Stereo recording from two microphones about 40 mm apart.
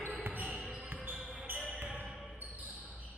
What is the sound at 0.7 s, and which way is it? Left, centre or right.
Basketball bounce, right.